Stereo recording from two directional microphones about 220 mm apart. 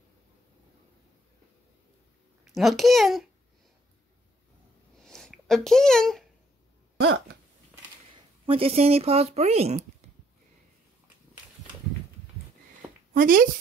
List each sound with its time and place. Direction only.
2.4 s a child's voice: centre (ahead or behind)
5.0 s a sound: centre (ahead or behind)
7.0 s hiccup: 50° right (ahead or behind)
8.5 s speech: 25° right (ahead or behind)
13.1 s speech: 40° right (ahead or behind)